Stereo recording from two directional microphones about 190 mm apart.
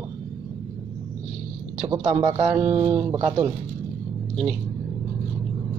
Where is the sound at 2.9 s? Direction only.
10° right (ahead or behind).